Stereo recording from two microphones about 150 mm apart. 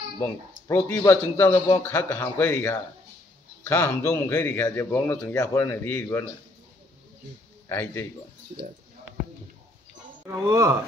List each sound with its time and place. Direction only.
0.2 s a man's voice: 20° left (ahead or behind)
7.6 s a man's voice: 15° left (ahead or behind)
10.2 s speech: 20° right (ahead or behind)